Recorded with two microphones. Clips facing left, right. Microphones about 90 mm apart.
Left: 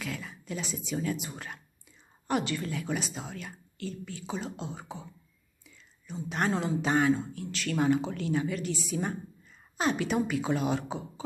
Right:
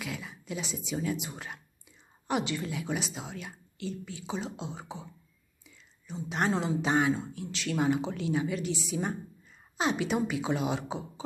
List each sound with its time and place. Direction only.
0.0 s speech: 15° right (ahead or behind)
6.0 s speech: 20° right (ahead or behind)